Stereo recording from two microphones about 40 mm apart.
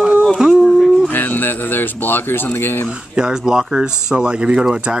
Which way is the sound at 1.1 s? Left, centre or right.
Left.